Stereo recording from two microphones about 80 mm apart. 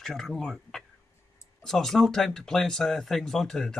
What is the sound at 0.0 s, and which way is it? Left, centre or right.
Speech, centre.